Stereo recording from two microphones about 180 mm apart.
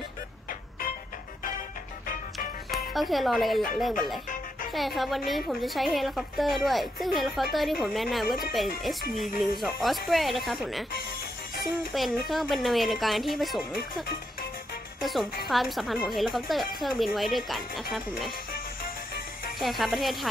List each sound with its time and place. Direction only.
0.5 s music: 55° left (ahead or behind)
2.3 s music: centre (ahead or behind)
4.7 s a woman's voice: centre (ahead or behind)
11.9 s a woman's voice: centre (ahead or behind)
15.0 s a woman's voice: centre (ahead or behind)
19.6 s a woman's voice: centre (ahead or behind)